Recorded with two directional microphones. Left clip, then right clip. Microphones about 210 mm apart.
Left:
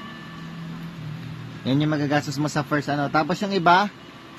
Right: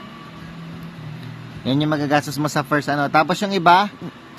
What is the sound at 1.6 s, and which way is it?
A man's voice, centre (ahead or behind).